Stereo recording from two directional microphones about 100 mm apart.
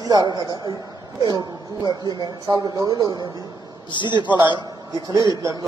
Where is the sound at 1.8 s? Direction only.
45° left (ahead or behind).